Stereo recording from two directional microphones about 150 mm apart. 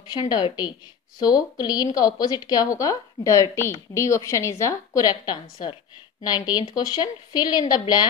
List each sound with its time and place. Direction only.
0.1 s a woman's voice: 30° left (ahead or behind)